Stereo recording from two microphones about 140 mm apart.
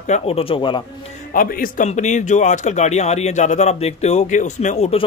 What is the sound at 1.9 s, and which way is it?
Speech, 55° left (ahead or behind).